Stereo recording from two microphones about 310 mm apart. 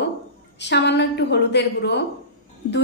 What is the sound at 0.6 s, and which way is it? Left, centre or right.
A woman's voice, left.